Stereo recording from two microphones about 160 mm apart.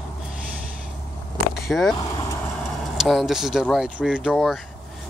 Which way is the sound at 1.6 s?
Centre (ahead or behind).